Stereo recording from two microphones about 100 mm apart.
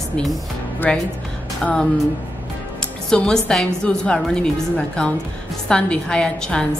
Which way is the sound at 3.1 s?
10° left (ahead or behind).